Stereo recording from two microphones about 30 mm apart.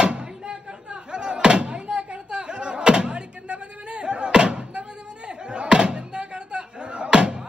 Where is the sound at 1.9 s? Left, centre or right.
Right.